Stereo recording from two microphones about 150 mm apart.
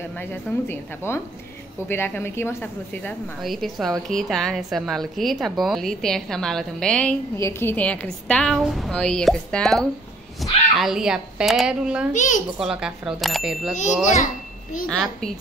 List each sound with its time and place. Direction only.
0.2 s speech: 15° left (ahead or behind)
3.4 s a woman's voice: centre (ahead or behind)
7.3 s a woman's voice: 15° left (ahead or behind); by 12.1 s 5° right (ahead or behind)
12.1 s a child's voice: 55° left (ahead or behind)
12.5 s a woman's voice: 5° right (ahead or behind)
14.0 s a child's voice: 60° left (ahead or behind)
14.9 s a woman's voice: 5° left (ahead or behind)